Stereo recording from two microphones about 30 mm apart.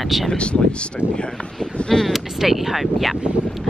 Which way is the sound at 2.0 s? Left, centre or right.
Centre.